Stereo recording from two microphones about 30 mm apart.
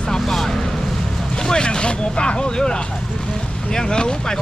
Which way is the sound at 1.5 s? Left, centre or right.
Left.